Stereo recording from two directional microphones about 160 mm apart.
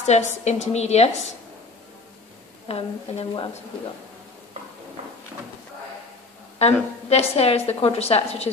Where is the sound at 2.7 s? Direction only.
35° left (ahead or behind).